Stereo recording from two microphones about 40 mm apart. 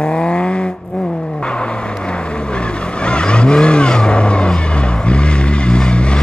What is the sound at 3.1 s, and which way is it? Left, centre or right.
Vehicle, left.